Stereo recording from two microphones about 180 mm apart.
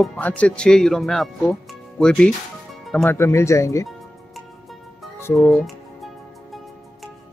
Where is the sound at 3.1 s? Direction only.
15° left (ahead or behind).